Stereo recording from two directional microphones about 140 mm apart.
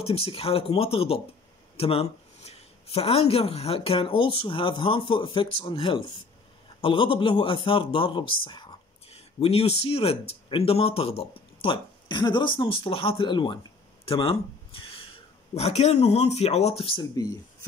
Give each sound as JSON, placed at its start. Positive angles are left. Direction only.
{"t": 0.0, "sound": "speech", "side_deg": 45}
{"t": 9.4, "sound": "speech", "side_deg": 45}
{"t": 17.1, "sound": "speech", "side_deg": 25}